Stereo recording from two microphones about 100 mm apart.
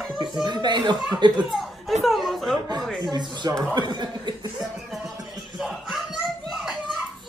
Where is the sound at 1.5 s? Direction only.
Centre (ahead or behind).